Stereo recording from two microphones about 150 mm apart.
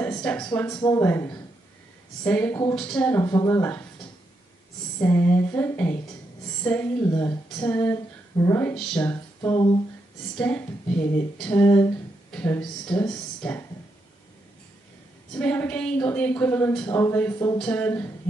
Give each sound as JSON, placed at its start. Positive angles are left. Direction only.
{"t": 0.4, "sound": "a woman's voice", "side_deg": 15}
{"t": 3.2, "sound": "speech", "side_deg": 20}
{"t": 5.0, "sound": "a woman's voice", "side_deg": 15}
{"t": 7.1, "sound": "speech", "side_deg": 25}
{"t": 7.4, "sound": "a woman's voice", "side_deg": 10}
{"t": 15.3, "sound": "a woman's voice", "side_deg": 10}